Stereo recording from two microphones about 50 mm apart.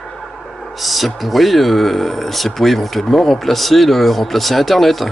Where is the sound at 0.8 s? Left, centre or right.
Centre.